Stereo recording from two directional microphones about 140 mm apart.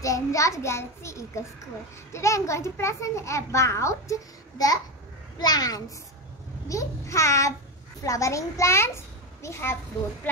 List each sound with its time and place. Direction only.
0.0 s a child's voice: 25° left (ahead or behind)